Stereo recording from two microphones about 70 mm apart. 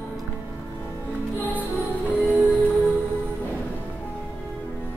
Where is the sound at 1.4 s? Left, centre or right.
Left.